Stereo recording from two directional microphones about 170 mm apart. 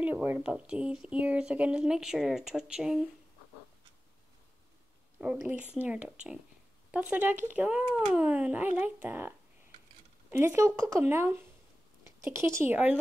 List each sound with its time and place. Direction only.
0.0 s a sound: 10° right (ahead or behind)
0.5 s speech: 5° right (ahead or behind)
5.2 s speech: 5° right (ahead or behind)
10.3 s speech: 15° right (ahead or behind)